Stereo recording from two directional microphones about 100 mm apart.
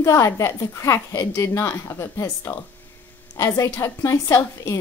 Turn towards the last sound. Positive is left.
turn(degrees=30)  # may be behind; listen again after turning